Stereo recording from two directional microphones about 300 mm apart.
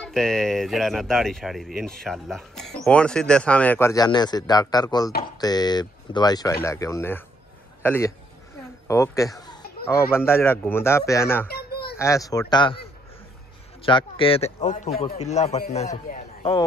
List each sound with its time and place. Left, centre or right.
0.0 s a man's voice: centre
11.4 s a sound: left
12.0 s speech: centre
13.8 s a man's voice: centre